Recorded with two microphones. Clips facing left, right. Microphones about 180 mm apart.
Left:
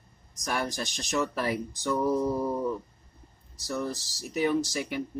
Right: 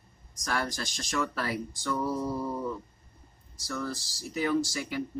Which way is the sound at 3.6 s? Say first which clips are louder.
Left 3 dB; 20° left (ahead or behind).